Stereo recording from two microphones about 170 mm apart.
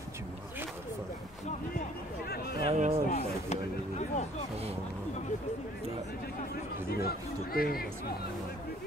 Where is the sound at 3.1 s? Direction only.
40° left (ahead or behind).